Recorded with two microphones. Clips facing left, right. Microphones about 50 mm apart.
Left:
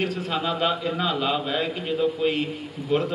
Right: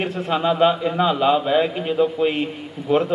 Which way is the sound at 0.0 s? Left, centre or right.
Right.